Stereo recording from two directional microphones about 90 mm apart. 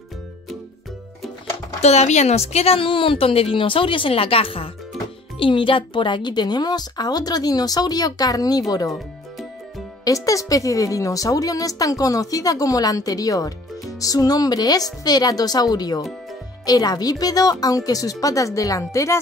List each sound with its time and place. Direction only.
2.6 s a woman's voice: 85° left
5.4 s speech: 75° left (ahead or behind); by 8.9 s 45° left (ahead or behind)
10.0 s a woman's voice: 40° left (ahead or behind)